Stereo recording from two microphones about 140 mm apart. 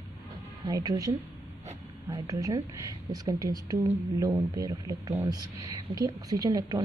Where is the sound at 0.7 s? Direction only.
25° right (ahead or behind).